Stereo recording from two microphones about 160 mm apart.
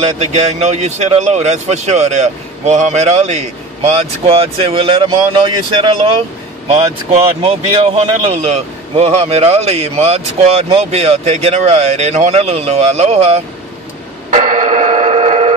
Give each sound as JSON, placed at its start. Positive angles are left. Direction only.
{"t": 0.2, "sound": "speech", "side_deg": -45}
{"t": 7.4, "sound": "a man's voice", "side_deg": -35}
{"t": 14.3, "sound": "a sound", "side_deg": -55}